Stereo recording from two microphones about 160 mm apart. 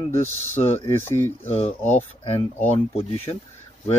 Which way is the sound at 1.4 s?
45° left (ahead or behind).